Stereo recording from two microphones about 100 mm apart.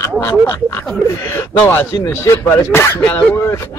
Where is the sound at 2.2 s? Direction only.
25° left (ahead or behind).